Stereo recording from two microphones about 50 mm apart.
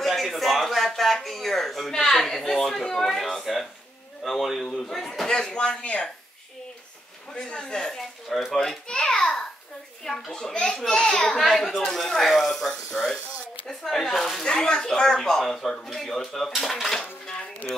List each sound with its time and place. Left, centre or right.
0.0 s music: centre
1.9 s speech: centre
4.2 s a sound: centre
4.6 s speech: centre
7.3 s speech: centre
8.8 s a sound: centre
10.0 s speech: centre